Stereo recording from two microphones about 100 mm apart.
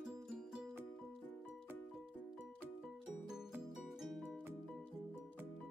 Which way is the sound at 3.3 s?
5° right (ahead or behind).